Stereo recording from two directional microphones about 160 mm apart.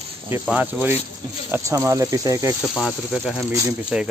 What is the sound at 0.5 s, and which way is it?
Speech, 10° right (ahead or behind).